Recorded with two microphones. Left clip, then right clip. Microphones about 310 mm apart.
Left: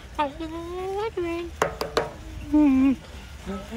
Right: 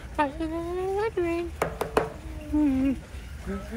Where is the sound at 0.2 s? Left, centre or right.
Centre.